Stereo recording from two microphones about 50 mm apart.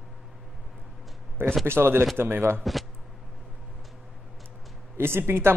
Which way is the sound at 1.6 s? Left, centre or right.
Right.